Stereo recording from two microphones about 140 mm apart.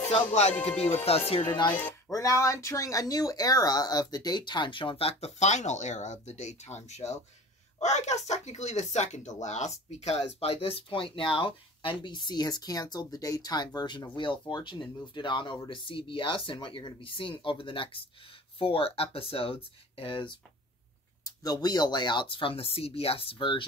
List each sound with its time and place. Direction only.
0.1 s music: 55° left (ahead or behind)
1.4 s speech: 35° left (ahead or behind)
1.7 s speech: 10° left (ahead or behind)
2.0 s speech: 25° left (ahead or behind)
21.4 s speech: 25° left (ahead or behind)